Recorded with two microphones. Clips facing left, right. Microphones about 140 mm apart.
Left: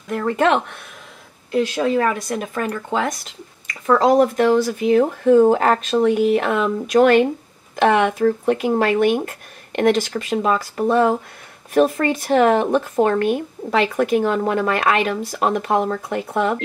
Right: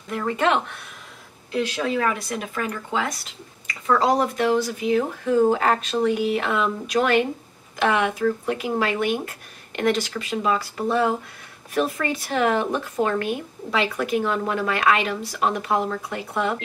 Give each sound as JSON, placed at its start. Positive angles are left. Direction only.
{"t": 0.1, "sound": "speech", "side_deg": 50}
{"t": 1.5, "sound": "speech", "side_deg": 40}